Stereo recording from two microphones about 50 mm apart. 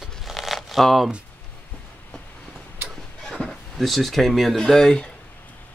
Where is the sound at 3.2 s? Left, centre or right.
Centre.